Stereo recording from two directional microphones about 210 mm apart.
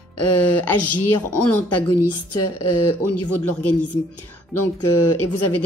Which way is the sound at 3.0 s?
90° left.